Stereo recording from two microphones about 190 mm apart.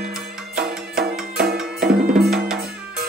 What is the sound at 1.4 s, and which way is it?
Music, 55° right (ahead or behind).